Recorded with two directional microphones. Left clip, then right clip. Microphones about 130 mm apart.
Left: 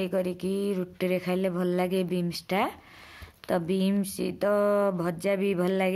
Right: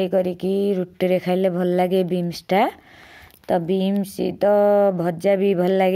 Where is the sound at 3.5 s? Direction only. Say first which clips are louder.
Right 7 dB; 25° right (ahead or behind).